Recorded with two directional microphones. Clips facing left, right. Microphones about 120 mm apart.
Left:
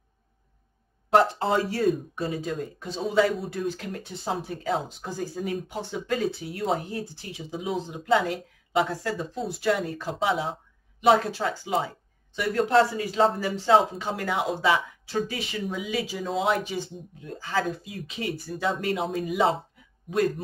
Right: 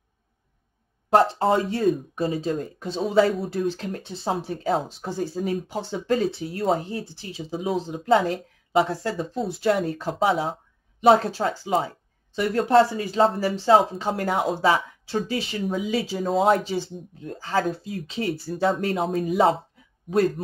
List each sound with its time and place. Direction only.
1.4 s speech: 30° right (ahead or behind)
16.5 s speech: 30° right (ahead or behind)